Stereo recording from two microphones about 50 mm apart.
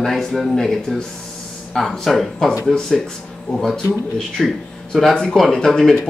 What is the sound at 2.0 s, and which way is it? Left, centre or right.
Speech, centre.